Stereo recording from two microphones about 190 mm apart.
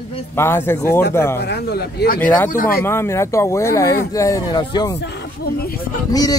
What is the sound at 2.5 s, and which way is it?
Speech, 50° left (ahead or behind).